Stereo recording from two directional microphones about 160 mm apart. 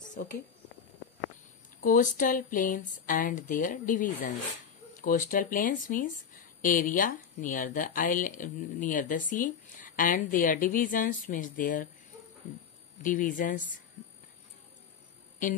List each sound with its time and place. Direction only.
0.2 s speech: 70° left (ahead or behind)
1.8 s speech: 60° left (ahead or behind)
13.0 s speech: 55° left (ahead or behind)